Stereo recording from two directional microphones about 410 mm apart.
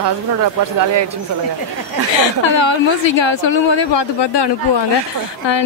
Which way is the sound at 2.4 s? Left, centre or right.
Left.